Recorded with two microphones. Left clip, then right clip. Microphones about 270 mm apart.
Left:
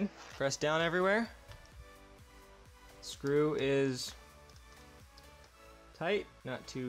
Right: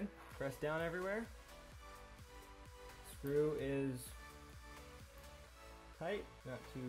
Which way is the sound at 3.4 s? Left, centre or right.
Left.